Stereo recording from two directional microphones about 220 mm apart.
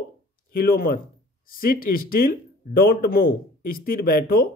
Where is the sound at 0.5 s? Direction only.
40° left (ahead or behind).